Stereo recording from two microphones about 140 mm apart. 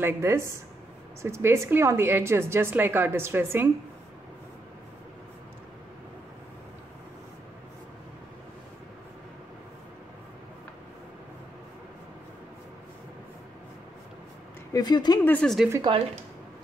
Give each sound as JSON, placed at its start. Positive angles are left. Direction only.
{"t": 0.0, "sound": "a woman's voice", "side_deg": -15}
{"t": 14.7, "sound": "speech", "side_deg": 30}
{"t": 15.2, "sound": "speech", "side_deg": 5}
{"t": 15.9, "sound": "speech", "side_deg": -35}